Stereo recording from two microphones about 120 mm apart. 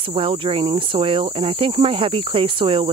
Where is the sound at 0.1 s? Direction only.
50° right (ahead or behind).